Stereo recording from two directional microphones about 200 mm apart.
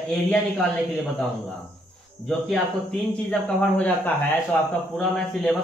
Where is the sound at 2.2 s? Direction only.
5° left (ahead or behind).